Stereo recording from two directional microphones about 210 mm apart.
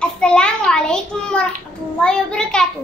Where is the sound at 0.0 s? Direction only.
5° left (ahead or behind).